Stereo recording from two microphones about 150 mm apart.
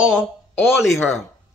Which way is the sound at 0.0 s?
5° right (ahead or behind).